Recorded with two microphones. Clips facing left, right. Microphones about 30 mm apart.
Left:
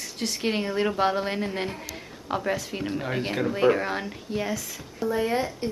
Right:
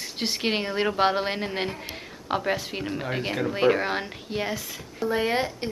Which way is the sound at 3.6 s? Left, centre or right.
Right.